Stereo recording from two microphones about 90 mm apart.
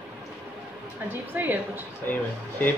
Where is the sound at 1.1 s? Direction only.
20° right (ahead or behind).